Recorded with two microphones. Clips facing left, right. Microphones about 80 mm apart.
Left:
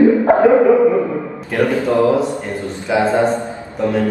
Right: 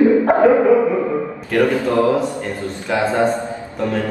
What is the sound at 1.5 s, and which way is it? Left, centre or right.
A man's voice, left.